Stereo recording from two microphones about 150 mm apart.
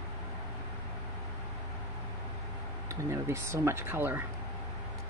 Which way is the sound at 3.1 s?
20° right (ahead or behind).